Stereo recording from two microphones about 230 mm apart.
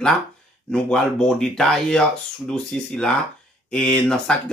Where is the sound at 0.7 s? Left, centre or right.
Centre.